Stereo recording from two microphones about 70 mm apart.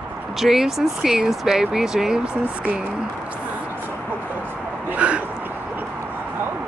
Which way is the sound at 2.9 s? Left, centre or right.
Centre.